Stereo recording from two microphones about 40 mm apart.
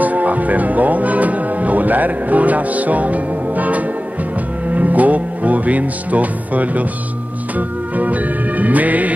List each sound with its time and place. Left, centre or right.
0.0 s speech: right
4.6 s music: right